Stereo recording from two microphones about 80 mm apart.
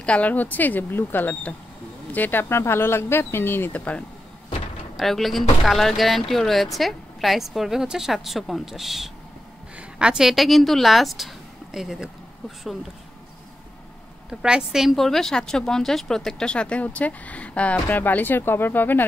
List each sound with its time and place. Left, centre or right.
0.0 s speech: centre
4.9 s a woman's voice: centre
14.3 s a woman's voice: centre; by 19.0 s left